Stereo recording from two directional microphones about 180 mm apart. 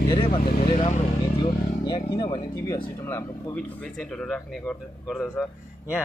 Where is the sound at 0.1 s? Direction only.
30° left (ahead or behind).